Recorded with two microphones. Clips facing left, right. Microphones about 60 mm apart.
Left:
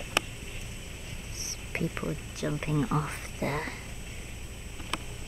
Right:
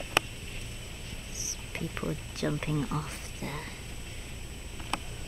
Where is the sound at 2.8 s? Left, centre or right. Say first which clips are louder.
Left 4 dB; left.